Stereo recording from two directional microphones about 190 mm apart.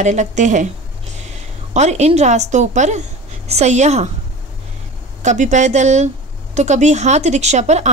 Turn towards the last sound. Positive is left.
turn(degrees=-35)  # may be behind; listen again after turning